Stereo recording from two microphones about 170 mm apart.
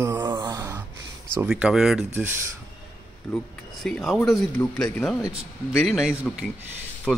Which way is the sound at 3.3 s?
5° left (ahead or behind).